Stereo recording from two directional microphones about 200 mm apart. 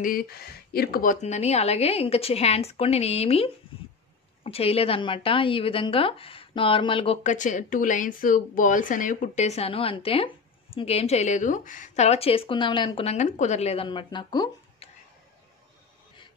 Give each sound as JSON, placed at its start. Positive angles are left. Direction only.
{"t": 0.0, "sound": "a woman's voice", "side_deg": 45}